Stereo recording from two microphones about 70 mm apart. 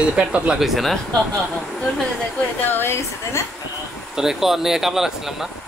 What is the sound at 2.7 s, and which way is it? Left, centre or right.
Speech, left.